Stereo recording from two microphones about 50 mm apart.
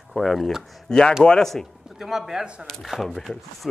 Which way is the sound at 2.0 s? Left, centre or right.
Centre.